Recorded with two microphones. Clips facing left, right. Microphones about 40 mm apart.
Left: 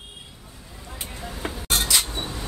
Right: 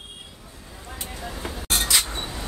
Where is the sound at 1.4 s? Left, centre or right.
Left.